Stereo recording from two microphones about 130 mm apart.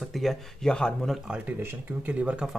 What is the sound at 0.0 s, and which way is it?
Speech, centre (ahead or behind).